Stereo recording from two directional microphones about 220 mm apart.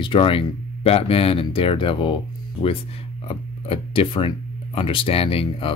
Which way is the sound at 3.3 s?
25° left (ahead or behind).